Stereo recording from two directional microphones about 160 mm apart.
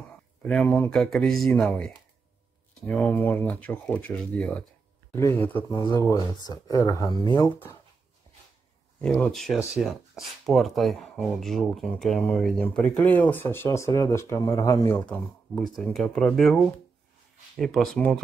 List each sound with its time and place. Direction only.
0.4 s speech: 5° left (ahead or behind)
5.7 s speech: 25° left (ahead or behind)
9.0 s speech: 5° left (ahead or behind)